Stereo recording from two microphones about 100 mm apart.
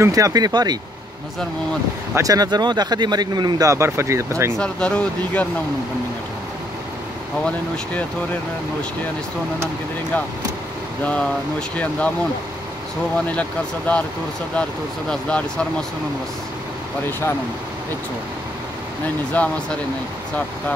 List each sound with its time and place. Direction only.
0.0 s speech: 35° right (ahead or behind)
2.1 s speech: 35° right (ahead or behind)
4.6 s speech: 10° left (ahead or behind)
7.4 s speech: 10° left (ahead or behind)
11.7 s speech: 15° left (ahead or behind)
13.3 s speech: 15° left (ahead or behind)
15.0 s speech: 10° left (ahead or behind)
19.4 s speech: 15° left (ahead or behind)